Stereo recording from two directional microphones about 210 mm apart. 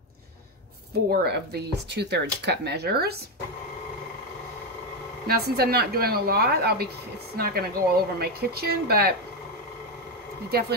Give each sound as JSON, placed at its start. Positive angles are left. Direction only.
{"t": 1.1, "sound": "speech", "side_deg": -50}
{"t": 5.2, "sound": "speech", "side_deg": -50}